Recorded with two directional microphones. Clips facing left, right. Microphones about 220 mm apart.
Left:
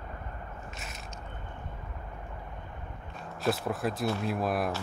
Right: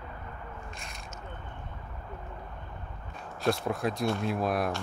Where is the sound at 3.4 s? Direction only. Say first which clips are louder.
Right 1 dB; 5° left (ahead or behind).